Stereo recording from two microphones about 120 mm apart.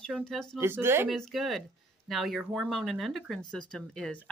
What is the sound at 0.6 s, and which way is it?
Speech, 20° right (ahead or behind).